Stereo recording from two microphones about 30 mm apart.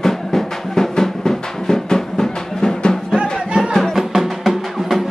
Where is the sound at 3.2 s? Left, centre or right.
Right.